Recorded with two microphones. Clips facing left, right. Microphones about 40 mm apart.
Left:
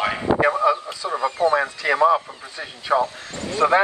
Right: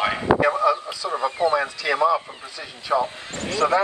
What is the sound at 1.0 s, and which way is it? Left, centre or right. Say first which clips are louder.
Radio: left 1 dB; left.